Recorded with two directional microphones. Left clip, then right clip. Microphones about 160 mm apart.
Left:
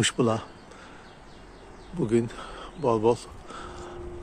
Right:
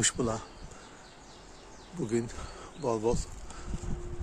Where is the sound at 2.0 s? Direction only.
5° left (ahead or behind).